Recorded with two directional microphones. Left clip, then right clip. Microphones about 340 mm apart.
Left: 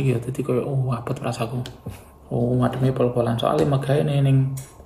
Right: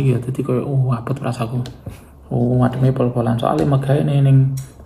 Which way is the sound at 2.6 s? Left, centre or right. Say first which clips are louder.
Right 3 dB; centre.